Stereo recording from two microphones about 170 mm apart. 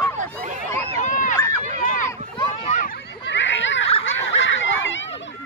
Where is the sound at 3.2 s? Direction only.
90° left.